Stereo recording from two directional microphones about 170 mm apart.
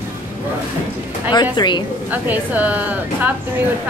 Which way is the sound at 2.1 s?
10° right (ahead or behind).